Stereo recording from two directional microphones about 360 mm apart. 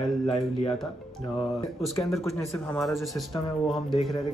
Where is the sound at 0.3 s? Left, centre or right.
Centre.